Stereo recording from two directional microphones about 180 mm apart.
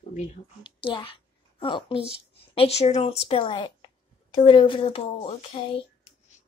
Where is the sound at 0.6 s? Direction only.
30° left (ahead or behind).